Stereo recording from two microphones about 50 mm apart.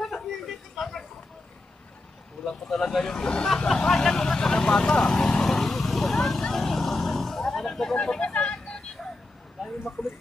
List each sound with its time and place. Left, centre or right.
0.0 s a sound: centre
2.4 s speech: centre
3.6 s vehicle: centre
8.2 s vehicle: left
10.0 s speech: left